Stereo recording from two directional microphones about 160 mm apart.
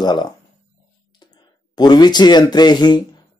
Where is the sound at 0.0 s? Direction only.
25° left (ahead or behind).